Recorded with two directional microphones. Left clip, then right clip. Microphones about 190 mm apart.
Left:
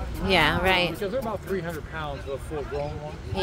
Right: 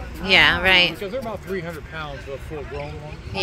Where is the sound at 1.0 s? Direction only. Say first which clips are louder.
Even; 35° right (ahead or behind).